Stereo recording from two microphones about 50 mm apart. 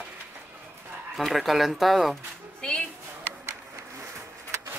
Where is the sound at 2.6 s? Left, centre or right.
Centre.